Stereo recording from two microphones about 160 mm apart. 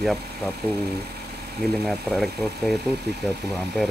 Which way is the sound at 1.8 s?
Centre (ahead or behind).